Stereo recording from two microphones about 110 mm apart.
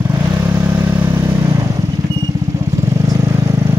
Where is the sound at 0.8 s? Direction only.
20° right (ahead or behind).